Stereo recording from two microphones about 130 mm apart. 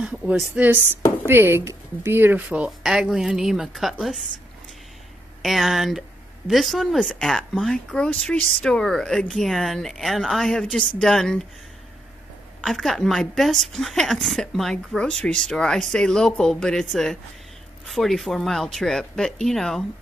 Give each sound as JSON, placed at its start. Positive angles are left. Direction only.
{"t": 0.0, "sound": "speech", "side_deg": -10}
{"t": 5.4, "sound": "speech", "side_deg": 0}
{"t": 12.6, "sound": "speech", "side_deg": 0}